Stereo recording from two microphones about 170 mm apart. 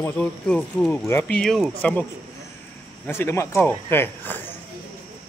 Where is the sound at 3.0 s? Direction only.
15° left (ahead or behind).